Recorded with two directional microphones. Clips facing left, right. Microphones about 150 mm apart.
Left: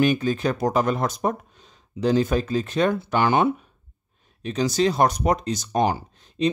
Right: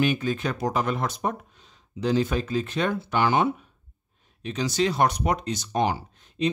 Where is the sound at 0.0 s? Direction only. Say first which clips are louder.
Left 4 dB; 40° left (ahead or behind).